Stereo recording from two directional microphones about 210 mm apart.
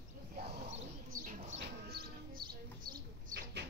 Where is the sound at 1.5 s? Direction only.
45° right (ahead or behind).